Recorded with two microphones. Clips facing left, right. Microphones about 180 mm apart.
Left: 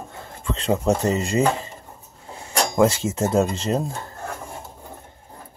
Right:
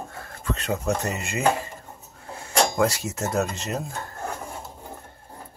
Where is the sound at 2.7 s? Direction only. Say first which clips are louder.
Left 5 dB; 25° left (ahead or behind).